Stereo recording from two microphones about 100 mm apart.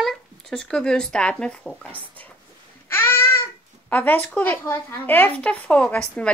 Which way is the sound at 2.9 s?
20° left (ahead or behind).